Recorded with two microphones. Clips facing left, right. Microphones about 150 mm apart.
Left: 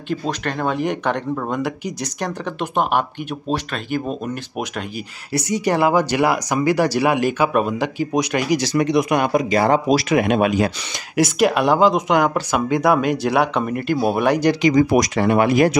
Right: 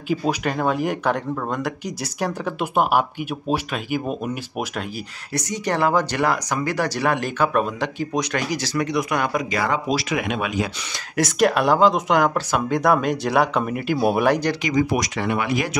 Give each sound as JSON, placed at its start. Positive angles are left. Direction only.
{"t": 0.1, "sound": "speech", "side_deg": -10}
{"t": 5.3, "sound": "speech", "side_deg": 10}
{"t": 11.1, "sound": "speech", "side_deg": 0}
{"t": 14.7, "sound": "speech", "side_deg": 45}